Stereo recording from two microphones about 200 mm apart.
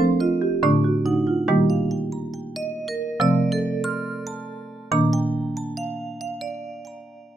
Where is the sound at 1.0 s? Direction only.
Centre (ahead or behind).